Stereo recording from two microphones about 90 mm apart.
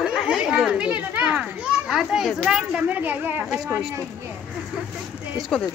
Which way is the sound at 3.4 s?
5° right (ahead or behind).